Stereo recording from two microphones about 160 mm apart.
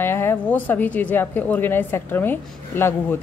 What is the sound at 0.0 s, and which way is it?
A woman's voice, 15° left (ahead or behind).